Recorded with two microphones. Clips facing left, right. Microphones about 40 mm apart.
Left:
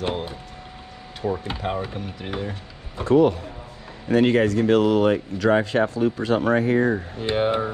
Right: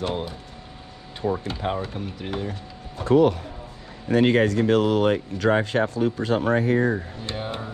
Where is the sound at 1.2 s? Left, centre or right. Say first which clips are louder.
Even; centre.